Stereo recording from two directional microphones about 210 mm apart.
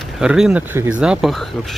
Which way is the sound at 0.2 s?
5° right (ahead or behind).